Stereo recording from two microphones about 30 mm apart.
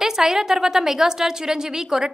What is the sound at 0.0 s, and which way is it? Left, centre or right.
A woman's voice, centre.